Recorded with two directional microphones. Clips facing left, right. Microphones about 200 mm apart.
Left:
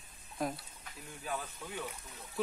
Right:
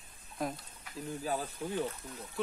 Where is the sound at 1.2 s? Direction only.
35° right (ahead or behind).